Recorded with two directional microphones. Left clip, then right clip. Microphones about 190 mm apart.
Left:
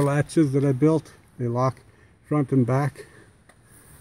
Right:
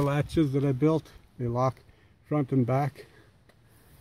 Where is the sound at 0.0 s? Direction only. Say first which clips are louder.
Left 5 dB; 5° left (ahead or behind).